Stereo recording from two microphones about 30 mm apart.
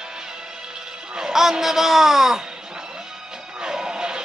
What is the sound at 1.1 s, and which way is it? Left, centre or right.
Speech, centre.